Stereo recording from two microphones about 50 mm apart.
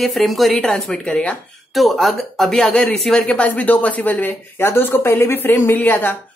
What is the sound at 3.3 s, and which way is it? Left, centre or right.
A woman's voice, left.